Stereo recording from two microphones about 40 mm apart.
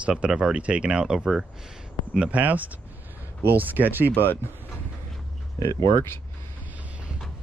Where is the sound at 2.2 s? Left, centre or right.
Right.